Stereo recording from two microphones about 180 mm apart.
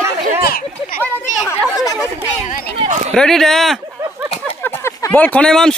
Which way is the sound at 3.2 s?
Centre (ahead or behind).